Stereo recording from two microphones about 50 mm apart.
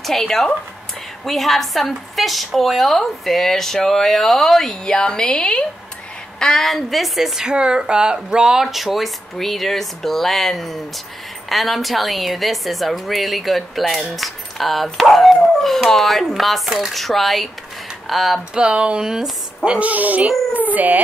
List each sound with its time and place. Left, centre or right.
0.0 s a woman's voice: centre
7.4 s speech: centre
18.5 s speech: centre
19.6 s speech: right